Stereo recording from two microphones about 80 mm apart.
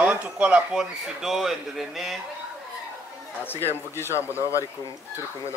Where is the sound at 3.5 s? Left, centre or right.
Left.